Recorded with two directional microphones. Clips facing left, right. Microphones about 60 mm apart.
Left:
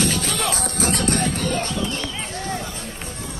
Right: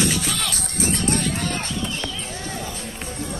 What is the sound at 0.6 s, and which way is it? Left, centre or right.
Music, left.